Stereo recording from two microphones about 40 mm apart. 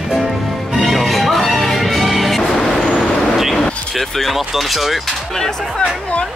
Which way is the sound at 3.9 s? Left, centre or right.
Centre.